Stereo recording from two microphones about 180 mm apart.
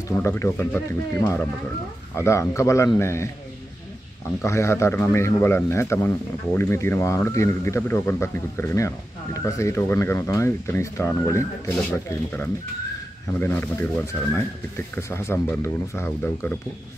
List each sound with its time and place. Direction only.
0.1 s a man's voice: 15° left (ahead or behind)
4.4 s a man's voice: 15° left (ahead or behind)
15.0 s a man's voice: 15° left (ahead or behind)